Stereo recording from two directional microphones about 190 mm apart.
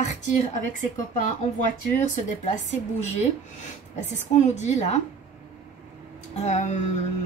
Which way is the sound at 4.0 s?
40° left (ahead or behind).